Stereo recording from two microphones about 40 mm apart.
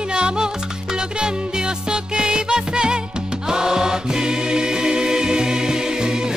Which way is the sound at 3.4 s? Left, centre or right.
Centre.